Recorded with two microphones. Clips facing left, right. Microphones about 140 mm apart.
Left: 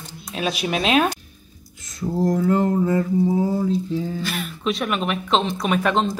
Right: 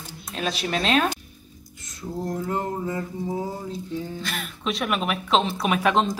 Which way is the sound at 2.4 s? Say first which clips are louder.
Left 8 dB; 90° left.